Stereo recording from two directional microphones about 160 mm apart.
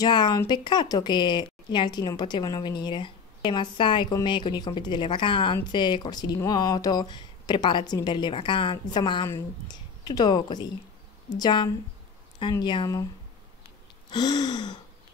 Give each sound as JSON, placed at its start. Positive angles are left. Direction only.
{"t": 0.0, "sound": "speech", "side_deg": 25}
{"t": 14.1, "sound": "speech", "side_deg": 25}